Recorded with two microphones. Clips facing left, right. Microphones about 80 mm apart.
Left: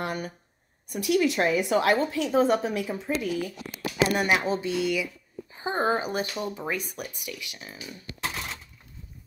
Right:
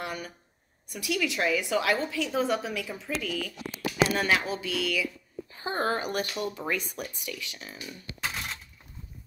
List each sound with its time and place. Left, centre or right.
0.0 s a sound: left
0.9 s a woman's voice: left
4.2 s speech: centre